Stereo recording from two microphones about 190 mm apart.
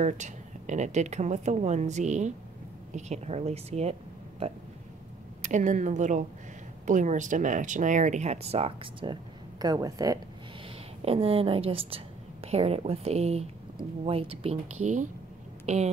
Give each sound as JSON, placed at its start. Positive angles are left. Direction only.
{"t": 0.0, "sound": "speech", "side_deg": -40}
{"t": 5.4, "sound": "speech", "side_deg": -40}
{"t": 11.1, "sound": "a woman's voice", "side_deg": -30}